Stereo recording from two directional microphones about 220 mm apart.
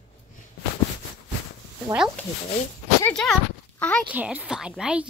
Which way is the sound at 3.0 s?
5° left (ahead or behind).